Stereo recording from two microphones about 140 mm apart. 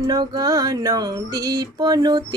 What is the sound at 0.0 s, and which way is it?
Music, 30° right (ahead or behind).